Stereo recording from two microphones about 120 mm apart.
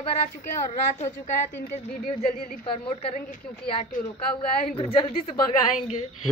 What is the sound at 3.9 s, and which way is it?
Speech, 90° left.